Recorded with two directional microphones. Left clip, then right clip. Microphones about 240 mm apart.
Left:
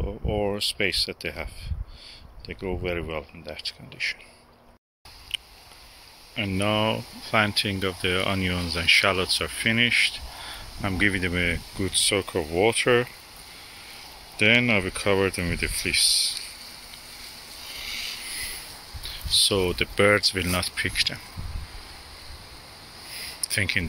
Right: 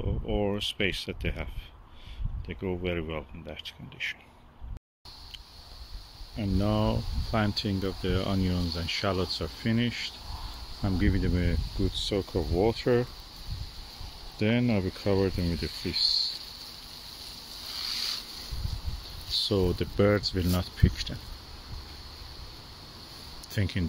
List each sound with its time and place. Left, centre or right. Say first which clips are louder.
0.0 s speech: left 3 dB; centre
6.3 s speech: left 6 dB; centre
14.4 s speech: left 9 dB; centre
17.8 s a sound: even; centre
19.3 s speech: left 6 dB; centre
23.5 s speech: left 10 dB; centre